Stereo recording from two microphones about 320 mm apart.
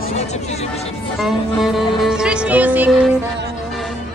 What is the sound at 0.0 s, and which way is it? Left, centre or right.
Music, left.